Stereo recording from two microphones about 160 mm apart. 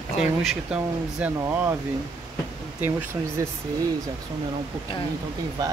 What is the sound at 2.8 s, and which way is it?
Speech, 10° right (ahead or behind).